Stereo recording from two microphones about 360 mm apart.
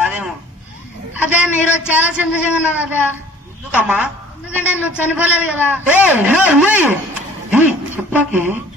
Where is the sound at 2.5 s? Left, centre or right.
Centre.